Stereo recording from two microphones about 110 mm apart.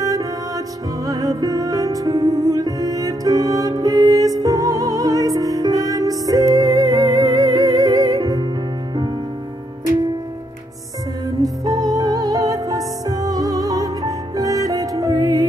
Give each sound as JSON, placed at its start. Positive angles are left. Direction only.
{"t": 0.0, "sound": "music", "side_deg": -30}
{"t": 11.2, "sound": "music", "side_deg": -30}